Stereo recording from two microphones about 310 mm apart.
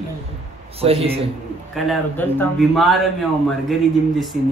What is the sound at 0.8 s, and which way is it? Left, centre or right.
Speech, centre.